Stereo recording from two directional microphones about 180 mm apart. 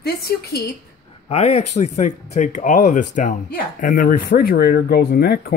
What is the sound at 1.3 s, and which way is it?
Speech, 35° left (ahead or behind).